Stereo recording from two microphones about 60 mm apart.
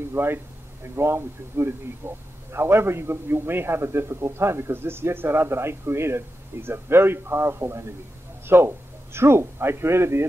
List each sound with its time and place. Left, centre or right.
0.1 s a man's voice: right